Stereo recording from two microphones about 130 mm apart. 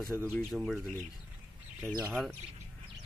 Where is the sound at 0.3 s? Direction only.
Centre (ahead or behind).